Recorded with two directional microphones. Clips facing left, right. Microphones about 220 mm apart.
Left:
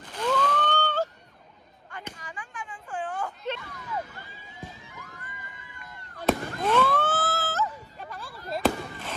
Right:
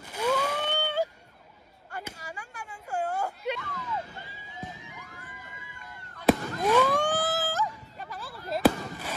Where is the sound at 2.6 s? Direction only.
40° right (ahead or behind).